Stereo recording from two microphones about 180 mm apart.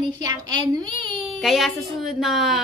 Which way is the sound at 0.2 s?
20° right (ahead or behind).